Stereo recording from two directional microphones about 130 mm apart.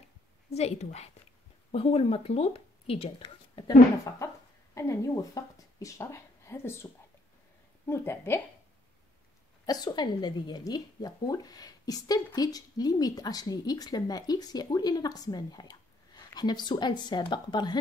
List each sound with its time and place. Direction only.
0.5 s a woman's voice: 55° left (ahead or behind)
4.7 s speech: 25° left (ahead or behind)
7.9 s a woman's voice: 20° left (ahead or behind)
9.7 s a woman's voice: 35° left (ahead or behind)